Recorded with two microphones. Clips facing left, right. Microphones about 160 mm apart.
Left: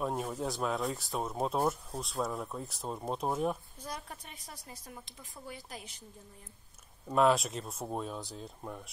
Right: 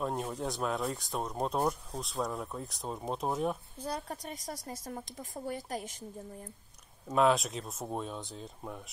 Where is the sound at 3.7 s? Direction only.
35° right (ahead or behind).